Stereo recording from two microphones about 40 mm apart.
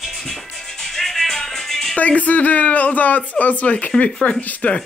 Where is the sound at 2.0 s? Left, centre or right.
Left.